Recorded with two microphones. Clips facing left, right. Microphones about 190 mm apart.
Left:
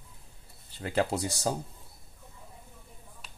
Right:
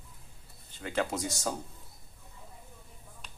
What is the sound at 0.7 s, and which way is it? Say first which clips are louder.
Speech: left 3 dB; 35° left (ahead or behind).